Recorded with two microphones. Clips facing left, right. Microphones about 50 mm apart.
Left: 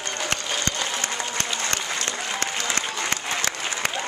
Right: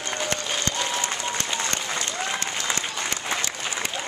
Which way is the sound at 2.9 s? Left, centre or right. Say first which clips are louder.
Left 1 dB; centre.